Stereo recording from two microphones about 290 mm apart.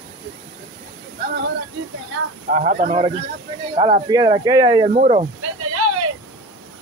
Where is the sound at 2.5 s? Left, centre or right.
Right.